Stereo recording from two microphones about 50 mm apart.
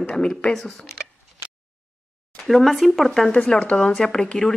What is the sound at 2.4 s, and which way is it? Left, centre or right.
Speech, centre.